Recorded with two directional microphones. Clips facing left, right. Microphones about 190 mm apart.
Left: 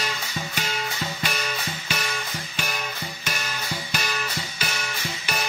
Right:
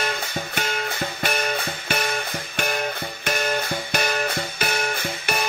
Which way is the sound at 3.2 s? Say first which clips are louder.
Right 9 dB; 55° right (ahead or behind).